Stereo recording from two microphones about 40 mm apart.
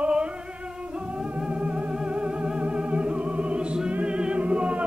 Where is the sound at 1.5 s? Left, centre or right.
Right.